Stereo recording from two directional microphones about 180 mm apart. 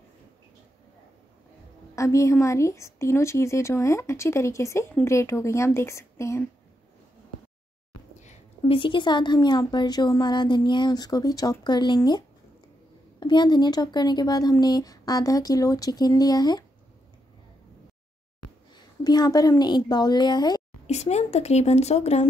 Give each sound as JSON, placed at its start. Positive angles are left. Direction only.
{"t": 2.0, "sound": "a woman's voice", "side_deg": 15}
{"t": 8.2, "sound": "a woman's voice", "side_deg": 35}
{"t": 19.0, "sound": "a woman's voice", "side_deg": 20}
{"t": 20.8, "sound": "speech", "side_deg": 40}